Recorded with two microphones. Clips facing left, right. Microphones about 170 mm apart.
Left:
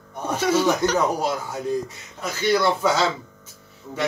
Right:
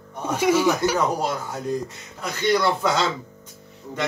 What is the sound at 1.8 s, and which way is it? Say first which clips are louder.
Speech: even; 5° left (ahead or behind).